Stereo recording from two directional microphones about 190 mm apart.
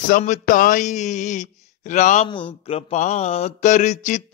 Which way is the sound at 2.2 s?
25° left (ahead or behind).